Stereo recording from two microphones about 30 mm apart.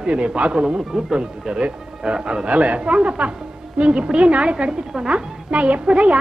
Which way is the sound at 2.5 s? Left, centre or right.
Right.